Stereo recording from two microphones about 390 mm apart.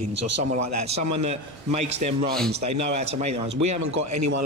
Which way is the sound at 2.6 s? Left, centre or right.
Right.